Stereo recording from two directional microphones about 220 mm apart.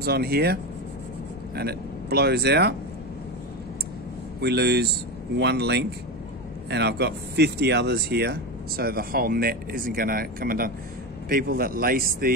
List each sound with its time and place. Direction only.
0.0 s speech: 45° right (ahead or behind)
4.4 s speech: 50° right (ahead or behind)